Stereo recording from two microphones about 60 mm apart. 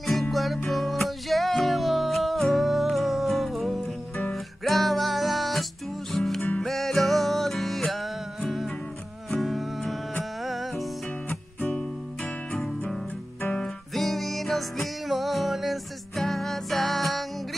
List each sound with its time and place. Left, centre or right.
0.0 s music: centre
11.2 s music: centre
13.9 s music: centre